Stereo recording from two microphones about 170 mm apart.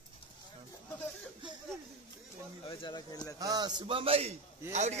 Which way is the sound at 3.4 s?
25° right (ahead or behind).